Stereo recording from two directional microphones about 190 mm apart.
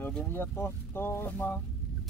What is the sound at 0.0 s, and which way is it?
Speech, 10° left (ahead or behind).